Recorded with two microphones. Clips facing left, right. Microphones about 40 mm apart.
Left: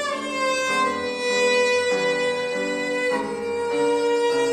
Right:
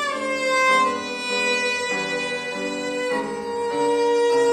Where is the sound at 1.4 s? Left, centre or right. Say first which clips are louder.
Left 3 dB; right.